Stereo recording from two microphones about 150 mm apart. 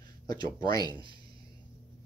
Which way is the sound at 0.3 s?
30° left (ahead or behind).